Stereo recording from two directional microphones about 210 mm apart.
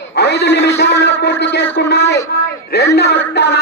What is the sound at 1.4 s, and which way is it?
Speech, 55° left (ahead or behind).